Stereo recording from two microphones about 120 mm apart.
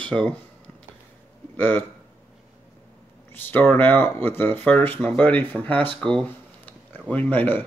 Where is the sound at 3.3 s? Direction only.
15° left (ahead or behind).